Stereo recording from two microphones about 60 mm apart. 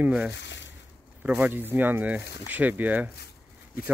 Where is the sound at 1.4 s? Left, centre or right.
Right.